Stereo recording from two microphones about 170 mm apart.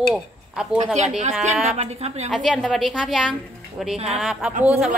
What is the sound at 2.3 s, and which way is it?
Speech, centre (ahead or behind).